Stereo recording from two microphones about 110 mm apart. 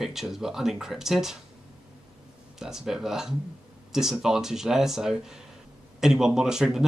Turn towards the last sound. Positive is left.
turn(degrees=-5)  # may be behind; listen again after turning